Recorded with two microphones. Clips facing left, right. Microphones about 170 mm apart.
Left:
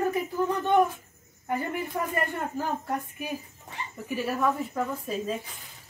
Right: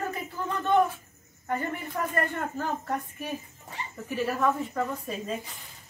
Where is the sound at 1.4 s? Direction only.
10° left (ahead or behind).